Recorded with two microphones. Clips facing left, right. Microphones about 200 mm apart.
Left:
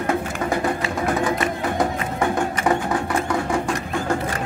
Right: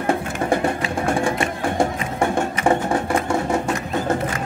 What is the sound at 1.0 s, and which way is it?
Music, 30° right (ahead or behind).